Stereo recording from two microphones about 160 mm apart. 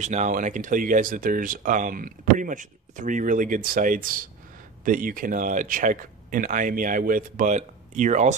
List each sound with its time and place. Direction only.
0.0 s speech: 50° right (ahead or behind)